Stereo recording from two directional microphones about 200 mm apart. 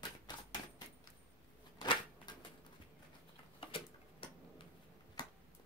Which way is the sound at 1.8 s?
20° left (ahead or behind).